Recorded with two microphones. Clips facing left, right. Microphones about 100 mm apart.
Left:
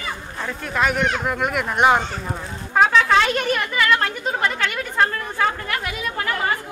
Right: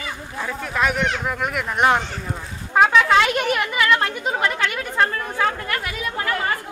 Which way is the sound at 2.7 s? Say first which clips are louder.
Right 1 dB; 10° right (ahead or behind).